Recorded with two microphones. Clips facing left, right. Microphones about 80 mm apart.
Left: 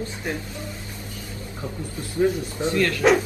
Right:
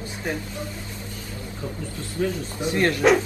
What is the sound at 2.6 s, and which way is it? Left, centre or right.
Speech, right.